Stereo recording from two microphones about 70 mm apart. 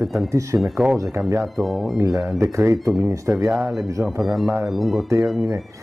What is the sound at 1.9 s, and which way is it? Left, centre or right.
Speech, right.